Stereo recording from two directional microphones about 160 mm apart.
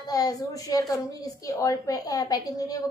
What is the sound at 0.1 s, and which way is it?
A woman's voice, 25° left (ahead or behind).